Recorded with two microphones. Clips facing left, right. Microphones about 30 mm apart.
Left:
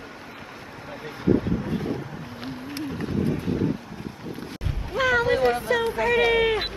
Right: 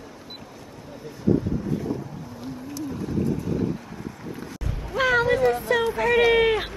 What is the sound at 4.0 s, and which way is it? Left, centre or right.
Boat, left.